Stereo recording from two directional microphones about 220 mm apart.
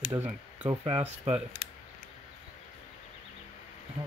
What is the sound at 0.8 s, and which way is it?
Speech, 25° right (ahead or behind).